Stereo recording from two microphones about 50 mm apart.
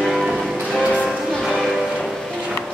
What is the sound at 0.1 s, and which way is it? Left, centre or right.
Music, centre.